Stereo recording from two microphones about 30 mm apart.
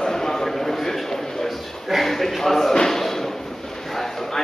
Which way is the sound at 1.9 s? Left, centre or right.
Centre.